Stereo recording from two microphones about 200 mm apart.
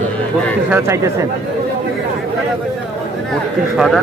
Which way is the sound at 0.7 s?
15° right (ahead or behind).